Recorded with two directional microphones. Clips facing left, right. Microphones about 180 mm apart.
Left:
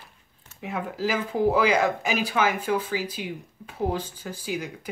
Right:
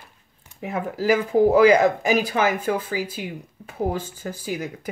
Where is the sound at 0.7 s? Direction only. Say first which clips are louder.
Right 6 dB; 45° right (ahead or behind).